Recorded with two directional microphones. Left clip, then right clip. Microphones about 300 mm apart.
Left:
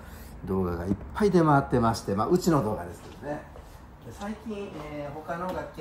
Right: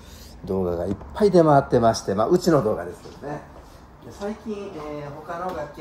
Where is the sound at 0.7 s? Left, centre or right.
Centre.